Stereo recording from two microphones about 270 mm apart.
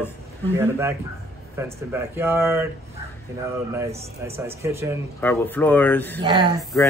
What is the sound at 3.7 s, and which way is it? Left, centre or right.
Speech, centre.